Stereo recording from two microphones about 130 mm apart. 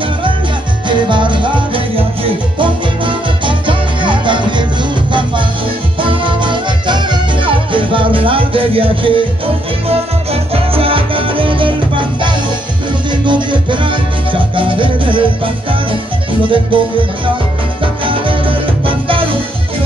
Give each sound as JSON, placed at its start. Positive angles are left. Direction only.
{"t": 0.8, "sound": "music", "side_deg": -40}
{"t": 5.9, "sound": "music", "side_deg": -40}
{"t": 18.0, "sound": "music", "side_deg": -40}